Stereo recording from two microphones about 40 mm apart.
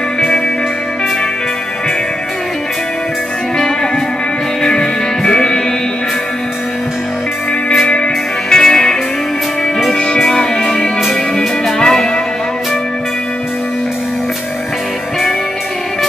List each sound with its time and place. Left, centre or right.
3.5 s music: centre
7.9 s music: left
10.1 s music: centre